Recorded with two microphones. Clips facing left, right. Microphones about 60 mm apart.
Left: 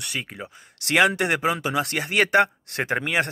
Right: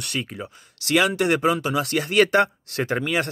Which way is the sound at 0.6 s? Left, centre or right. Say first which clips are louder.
Left 1 dB; left.